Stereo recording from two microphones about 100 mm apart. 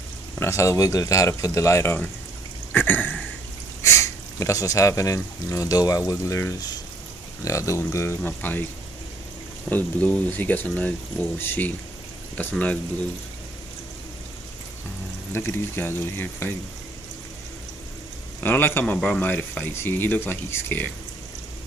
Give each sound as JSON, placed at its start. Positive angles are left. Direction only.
{"t": 0.4, "sound": "speech", "side_deg": 30}
{"t": 2.7, "sound": "a sound", "side_deg": 15}
{"t": 3.8, "sound": "speech", "side_deg": 30}
{"t": 8.2, "sound": "speech", "side_deg": 15}
{"t": 9.7, "sound": "speech", "side_deg": 15}
{"t": 15.3, "sound": "speech", "side_deg": 20}
{"t": 18.4, "sound": "speech", "side_deg": 20}